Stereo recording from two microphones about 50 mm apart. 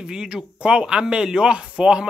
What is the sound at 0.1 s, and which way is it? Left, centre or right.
Speech, centre.